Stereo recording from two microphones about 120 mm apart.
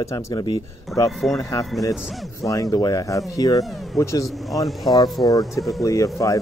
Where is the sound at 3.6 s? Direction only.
Centre (ahead or behind).